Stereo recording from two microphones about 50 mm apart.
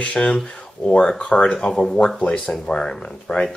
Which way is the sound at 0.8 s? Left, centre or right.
Centre.